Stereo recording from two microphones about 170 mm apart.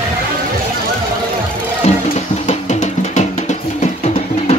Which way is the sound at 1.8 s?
40° left (ahead or behind).